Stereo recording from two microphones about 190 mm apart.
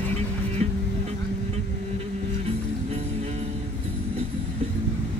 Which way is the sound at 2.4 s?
35° right (ahead or behind).